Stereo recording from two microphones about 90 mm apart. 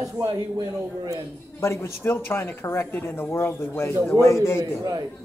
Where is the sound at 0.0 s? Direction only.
40° right (ahead or behind).